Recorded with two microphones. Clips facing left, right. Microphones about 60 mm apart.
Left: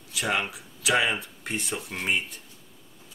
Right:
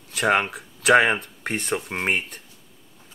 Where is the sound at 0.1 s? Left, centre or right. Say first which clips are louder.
Right 7 dB; right.